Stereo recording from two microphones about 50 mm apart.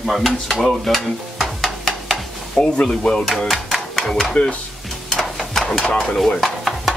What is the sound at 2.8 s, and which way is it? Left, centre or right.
Speech, centre.